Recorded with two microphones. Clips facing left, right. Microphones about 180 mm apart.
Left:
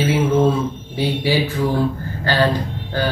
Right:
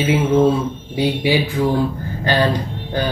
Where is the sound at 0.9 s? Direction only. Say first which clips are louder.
Right 2 dB; 15° right (ahead or behind).